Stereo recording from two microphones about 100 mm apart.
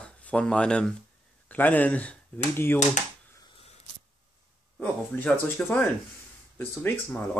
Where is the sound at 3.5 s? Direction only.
80° left.